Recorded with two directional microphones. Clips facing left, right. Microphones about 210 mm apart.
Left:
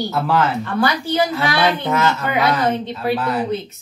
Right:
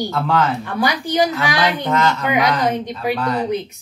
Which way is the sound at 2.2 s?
15° right (ahead or behind).